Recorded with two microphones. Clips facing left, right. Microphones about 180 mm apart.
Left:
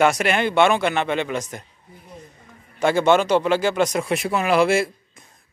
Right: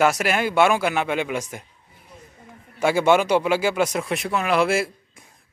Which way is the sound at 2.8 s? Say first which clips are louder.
Left 1 dB; 10° right (ahead or behind).